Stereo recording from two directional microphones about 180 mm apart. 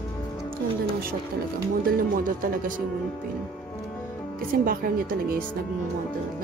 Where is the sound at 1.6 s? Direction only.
50° right (ahead or behind).